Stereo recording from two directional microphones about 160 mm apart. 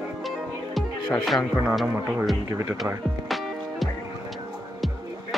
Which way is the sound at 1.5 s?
5° right (ahead or behind).